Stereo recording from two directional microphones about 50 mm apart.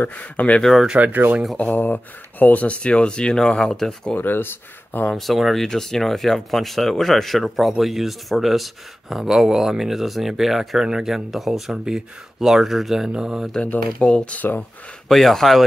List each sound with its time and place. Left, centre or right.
0.1 s speech: left
0.6 s speech: centre
0.9 s speech: right
1.6 s speech: left; by 3.8 s centre
4.1 s speech: left
5.1 s speech: centre
14.0 s speech: left
15.0 s speech: centre